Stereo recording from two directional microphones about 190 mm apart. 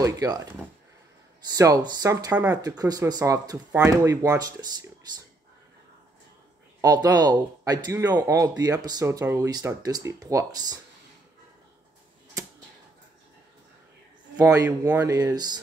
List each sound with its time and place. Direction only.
0.0 s speech: 20° right (ahead or behind)
6.8 s speech: 20° right (ahead or behind)
14.3 s speech: 10° right (ahead or behind)